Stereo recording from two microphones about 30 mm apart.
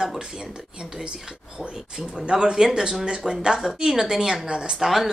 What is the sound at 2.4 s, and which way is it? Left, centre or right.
Speech, right.